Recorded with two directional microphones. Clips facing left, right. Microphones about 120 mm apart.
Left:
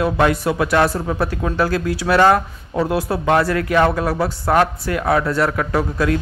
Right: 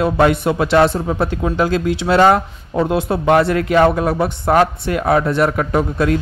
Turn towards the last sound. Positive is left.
turn(degrees=-25)  # may be behind; listen again after turning